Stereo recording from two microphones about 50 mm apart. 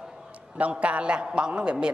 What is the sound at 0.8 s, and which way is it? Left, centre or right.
A man's voice, right.